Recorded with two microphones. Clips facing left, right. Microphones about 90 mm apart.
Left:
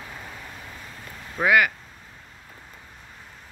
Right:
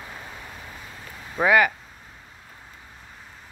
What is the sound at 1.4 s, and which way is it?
Speech, 25° right (ahead or behind).